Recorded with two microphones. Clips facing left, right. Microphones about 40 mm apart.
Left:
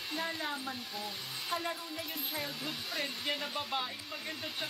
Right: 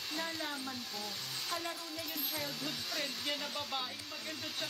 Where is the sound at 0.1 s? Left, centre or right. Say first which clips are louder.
Left 3 dB; centre.